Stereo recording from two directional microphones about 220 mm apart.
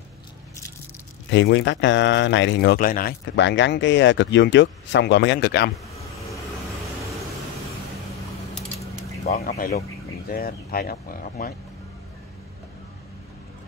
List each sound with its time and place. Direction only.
1.3 s speech: 55° left (ahead or behind)
3.3 s speech: 55° left (ahead or behind)
9.2 s speech: 40° left (ahead or behind)